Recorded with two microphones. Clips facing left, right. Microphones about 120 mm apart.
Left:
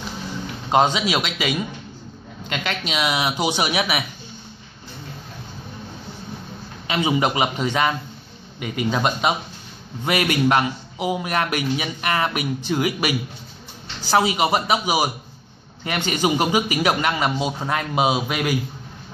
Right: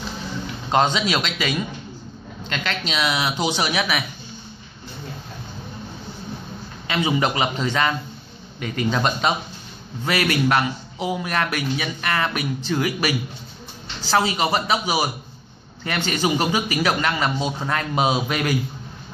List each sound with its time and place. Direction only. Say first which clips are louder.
0.7 s a man's voice: left 1 dB; 10° left (ahead or behind)
6.9 s a man's voice: left 1 dB; 15° left (ahead or behind)